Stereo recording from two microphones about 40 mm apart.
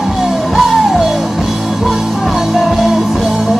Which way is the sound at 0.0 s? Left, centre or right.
Centre.